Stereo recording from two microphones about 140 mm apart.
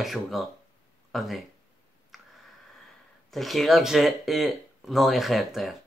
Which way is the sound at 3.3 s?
Centre (ahead or behind).